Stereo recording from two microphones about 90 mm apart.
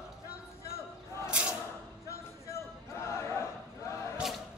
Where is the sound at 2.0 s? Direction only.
35° left (ahead or behind).